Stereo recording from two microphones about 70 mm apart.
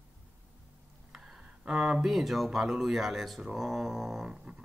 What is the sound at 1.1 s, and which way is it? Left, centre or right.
Speech, centre.